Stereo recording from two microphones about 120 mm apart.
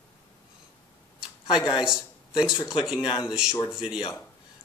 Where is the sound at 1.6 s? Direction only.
35° left (ahead or behind).